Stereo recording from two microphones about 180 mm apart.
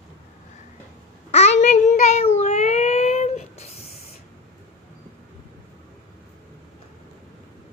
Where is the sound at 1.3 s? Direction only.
40° left (ahead or behind).